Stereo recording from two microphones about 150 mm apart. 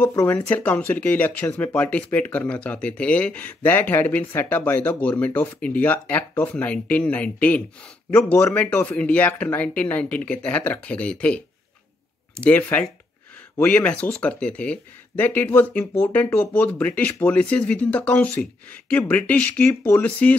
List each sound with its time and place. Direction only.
0.0 s speech: 15° left (ahead or behind)